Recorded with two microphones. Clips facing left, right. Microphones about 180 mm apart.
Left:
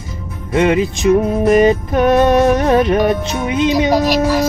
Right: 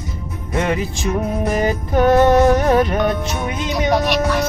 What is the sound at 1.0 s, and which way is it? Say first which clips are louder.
Music: left 10 dB; 90° left.